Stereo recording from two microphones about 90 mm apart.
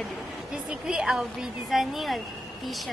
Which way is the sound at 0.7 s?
10° right (ahead or behind).